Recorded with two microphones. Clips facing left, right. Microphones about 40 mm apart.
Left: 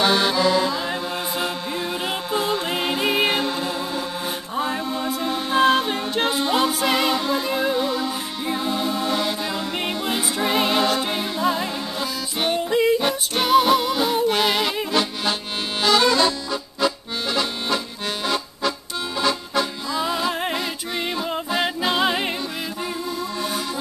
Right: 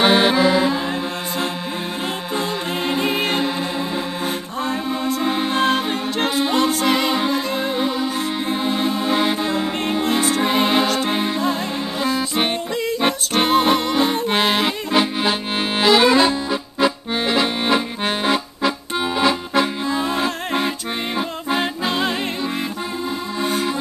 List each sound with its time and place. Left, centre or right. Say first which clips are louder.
0.0 s accordion: right 4 dB; right
2.4 s music: even; centre
5.5 s music: left 5 dB; centre
7.7 s music: right 2 dB; centre
10.4 s music: left 1 dB; centre
12.0 s music: right 6 dB; right
12.7 s yodeling: left 5 dB; centre
13.0 s music: right 4 dB; right
15.8 s accordion: right 3 dB; right